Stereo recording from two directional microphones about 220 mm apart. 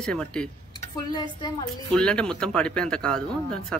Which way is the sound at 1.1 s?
20° left (ahead or behind).